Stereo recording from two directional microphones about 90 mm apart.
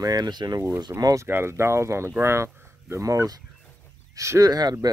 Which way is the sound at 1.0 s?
40° right (ahead or behind).